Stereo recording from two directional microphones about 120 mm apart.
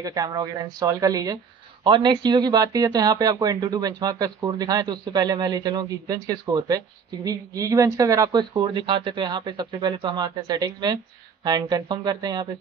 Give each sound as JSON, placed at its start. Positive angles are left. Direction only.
{"t": 0.0, "sound": "speech", "side_deg": -35}
{"t": 1.9, "sound": "speech", "side_deg": -40}